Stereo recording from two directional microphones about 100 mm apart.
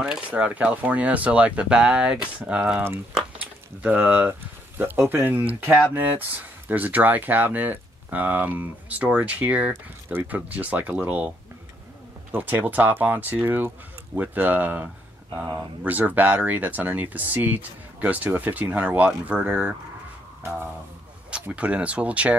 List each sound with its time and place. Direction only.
0.0 s speech: 10° right (ahead or behind)
21.3 s speech: 10° right (ahead or behind)